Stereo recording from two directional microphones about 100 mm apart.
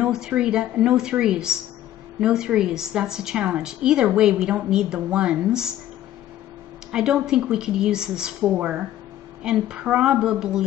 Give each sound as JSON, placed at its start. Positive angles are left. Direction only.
{"t": 0.0, "sound": "a woman's voice", "side_deg": -10}
{"t": 6.9, "sound": "a woman's voice", "side_deg": -5}